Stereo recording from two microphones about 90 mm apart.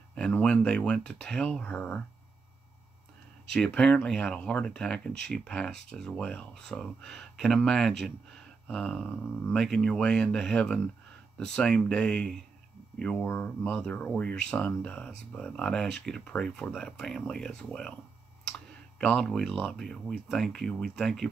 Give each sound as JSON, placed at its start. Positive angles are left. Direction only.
{"t": 0.1, "sound": "speech", "side_deg": 10}
{"t": 3.5, "sound": "speech", "side_deg": 10}
{"t": 18.9, "sound": "speech", "side_deg": 10}